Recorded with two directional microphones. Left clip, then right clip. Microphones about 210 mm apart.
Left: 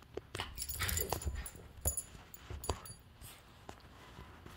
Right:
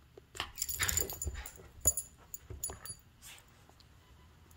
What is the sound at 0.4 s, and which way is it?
Dog, 15° right (ahead or behind).